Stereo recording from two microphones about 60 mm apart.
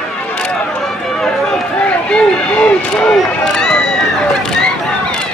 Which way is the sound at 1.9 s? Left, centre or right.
Centre.